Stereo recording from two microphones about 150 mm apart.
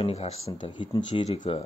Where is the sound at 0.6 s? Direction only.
35° left (ahead or behind).